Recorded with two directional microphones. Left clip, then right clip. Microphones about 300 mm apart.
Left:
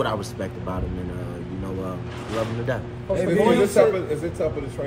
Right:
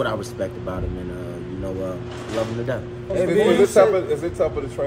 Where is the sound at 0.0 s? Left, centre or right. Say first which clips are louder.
Right 2 dB; centre.